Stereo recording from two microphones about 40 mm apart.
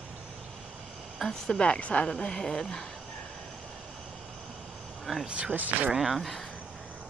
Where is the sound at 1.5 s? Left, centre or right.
Left.